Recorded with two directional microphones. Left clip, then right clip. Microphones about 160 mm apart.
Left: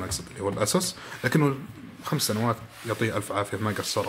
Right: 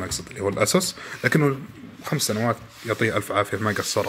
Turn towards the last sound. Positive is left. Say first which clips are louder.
# right 4 dB
turn(degrees=-15)  # may be behind; listen again after turning